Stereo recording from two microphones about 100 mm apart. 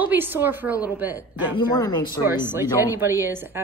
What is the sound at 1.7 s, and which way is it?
Speech, 40° left (ahead or behind).